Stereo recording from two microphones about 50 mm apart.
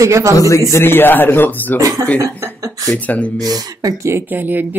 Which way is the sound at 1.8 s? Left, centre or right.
Right.